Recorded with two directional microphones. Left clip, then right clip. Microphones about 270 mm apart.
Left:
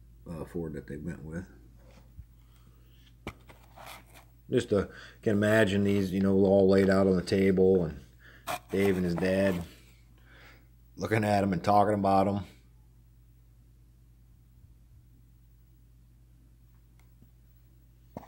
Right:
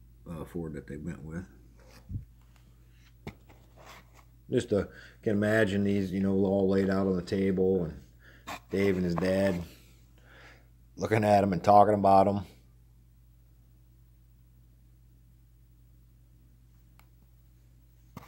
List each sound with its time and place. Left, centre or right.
0.2 s speech: centre
4.5 s speech: centre